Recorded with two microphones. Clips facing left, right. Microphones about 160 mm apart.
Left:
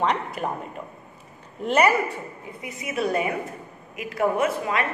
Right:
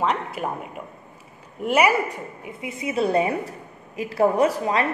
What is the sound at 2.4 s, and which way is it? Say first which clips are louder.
A woman's voice: right 5 dB; 25° right (ahead or behind).